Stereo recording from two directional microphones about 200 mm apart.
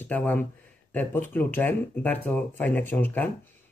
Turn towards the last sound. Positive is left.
turn(degrees=10)  # may be behind; listen again after turning